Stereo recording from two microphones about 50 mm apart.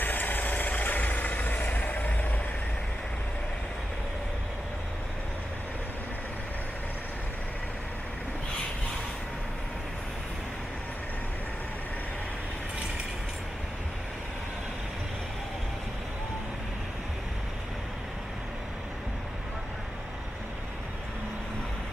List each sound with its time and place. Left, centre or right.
0.0 s vehicle: left